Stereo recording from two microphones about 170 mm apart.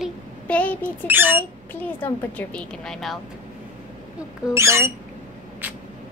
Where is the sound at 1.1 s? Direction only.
10° right (ahead or behind).